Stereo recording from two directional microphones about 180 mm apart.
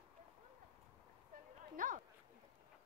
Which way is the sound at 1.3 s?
45° right (ahead or behind).